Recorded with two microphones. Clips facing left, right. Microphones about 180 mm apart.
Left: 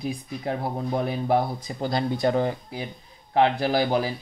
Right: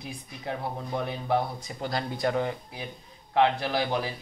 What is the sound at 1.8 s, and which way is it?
Speech, 25° left (ahead or behind).